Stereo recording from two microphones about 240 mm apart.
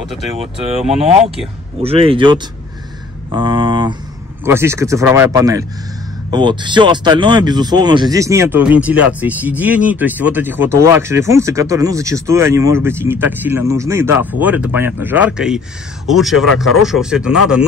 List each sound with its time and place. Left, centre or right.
1.8 s speech: right; by 17.6 s centre